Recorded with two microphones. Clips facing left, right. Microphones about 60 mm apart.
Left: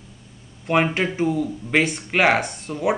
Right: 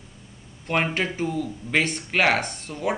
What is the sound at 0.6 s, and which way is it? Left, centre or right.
Speech, centre.